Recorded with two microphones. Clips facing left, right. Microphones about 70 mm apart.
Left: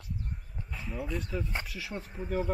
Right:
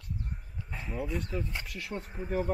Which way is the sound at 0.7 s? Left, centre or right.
Right.